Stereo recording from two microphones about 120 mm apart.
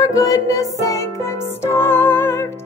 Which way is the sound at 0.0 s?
30° left (ahead or behind).